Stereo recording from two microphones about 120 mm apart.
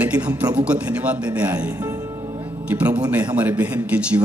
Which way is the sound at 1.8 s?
25° right (ahead or behind).